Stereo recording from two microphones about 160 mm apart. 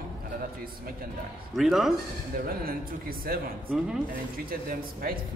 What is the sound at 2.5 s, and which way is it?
A man's voice, 65° right (ahead or behind).